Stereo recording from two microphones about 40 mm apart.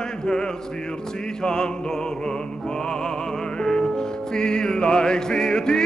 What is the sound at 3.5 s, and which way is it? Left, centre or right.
Music, centre.